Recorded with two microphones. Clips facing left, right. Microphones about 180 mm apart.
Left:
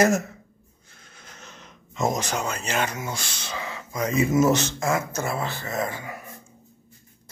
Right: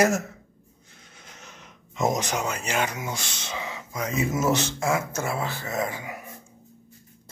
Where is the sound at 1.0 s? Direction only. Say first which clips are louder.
Left 1 dB; 15° right (ahead or behind).